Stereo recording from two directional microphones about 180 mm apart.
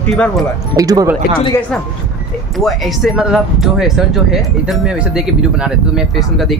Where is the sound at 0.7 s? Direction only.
20° right (ahead or behind).